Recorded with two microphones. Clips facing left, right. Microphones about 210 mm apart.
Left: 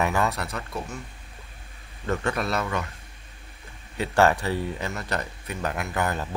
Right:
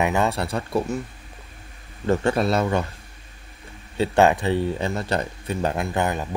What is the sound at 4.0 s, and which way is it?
Speech, 20° right (ahead or behind).